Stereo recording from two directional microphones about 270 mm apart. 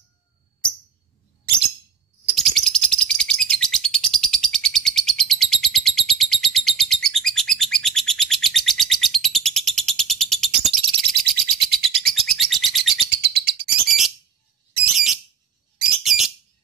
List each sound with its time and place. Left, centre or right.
2.2 s chirp: centre
6.8 s bird: centre
13.1 s bird: right
13.8 s bird: centre
16.0 s bird: centre